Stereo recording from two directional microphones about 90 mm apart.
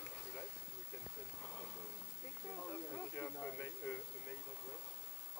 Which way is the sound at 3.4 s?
20° left (ahead or behind).